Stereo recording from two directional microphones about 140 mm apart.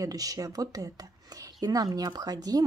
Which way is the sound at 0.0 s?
25° right (ahead or behind).